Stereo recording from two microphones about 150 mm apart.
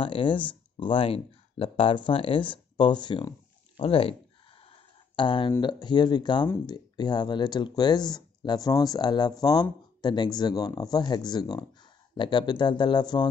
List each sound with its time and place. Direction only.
0.0 s speech: 35° left (ahead or behind)
4.6 s a sound: 35° left (ahead or behind)
5.6 s speech: 30° left (ahead or behind)